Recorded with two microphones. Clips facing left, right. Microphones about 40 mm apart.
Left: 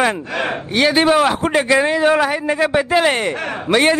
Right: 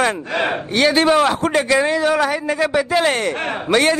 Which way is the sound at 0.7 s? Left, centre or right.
Centre.